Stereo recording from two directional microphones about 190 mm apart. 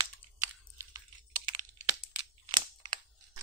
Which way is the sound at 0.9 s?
20° right (ahead or behind).